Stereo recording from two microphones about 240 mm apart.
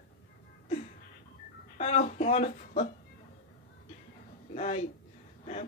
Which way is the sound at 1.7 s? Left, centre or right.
Left.